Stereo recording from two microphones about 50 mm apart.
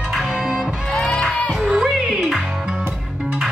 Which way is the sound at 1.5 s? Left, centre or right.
Centre.